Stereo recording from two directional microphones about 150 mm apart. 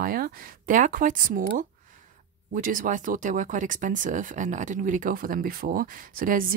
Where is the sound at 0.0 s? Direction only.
80° right.